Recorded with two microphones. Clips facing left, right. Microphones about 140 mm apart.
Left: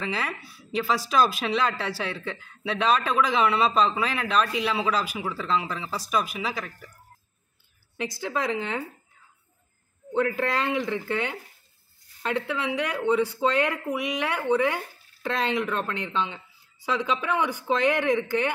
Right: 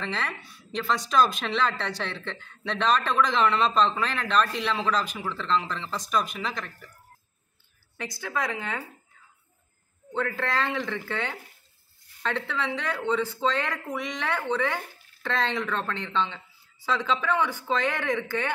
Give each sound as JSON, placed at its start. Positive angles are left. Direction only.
{"t": 0.0, "sound": "speech", "side_deg": 5}
{"t": 8.0, "sound": "a woman's voice", "side_deg": 20}
{"t": 10.1, "sound": "speech", "side_deg": 15}